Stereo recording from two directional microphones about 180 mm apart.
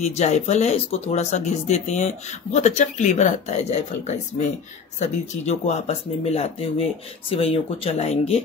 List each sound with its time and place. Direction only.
0.0 s speech: 40° left (ahead or behind)